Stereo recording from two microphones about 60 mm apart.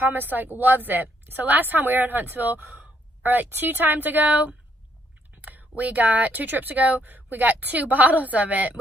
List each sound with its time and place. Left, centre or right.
0.0 s a woman's voice: right